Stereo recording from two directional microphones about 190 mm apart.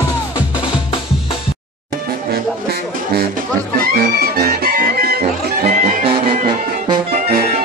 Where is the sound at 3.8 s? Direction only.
50° right (ahead or behind).